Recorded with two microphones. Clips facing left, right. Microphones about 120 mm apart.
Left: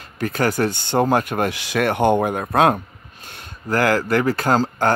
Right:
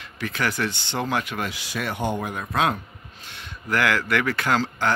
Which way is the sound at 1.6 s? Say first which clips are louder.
Left 12 dB; 70° left (ahead or behind).